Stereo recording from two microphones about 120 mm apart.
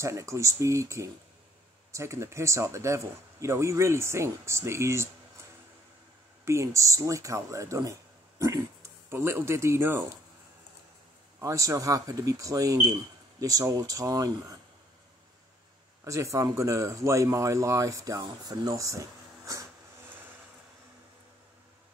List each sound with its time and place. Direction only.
0.0 s speech: 25° right (ahead or behind)
6.4 s speech: 25° right (ahead or behind)
11.4 s speech: 25° right (ahead or behind)
16.0 s speech: 25° right (ahead or behind)